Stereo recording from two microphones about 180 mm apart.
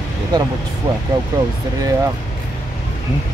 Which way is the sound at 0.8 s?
20° right (ahead or behind).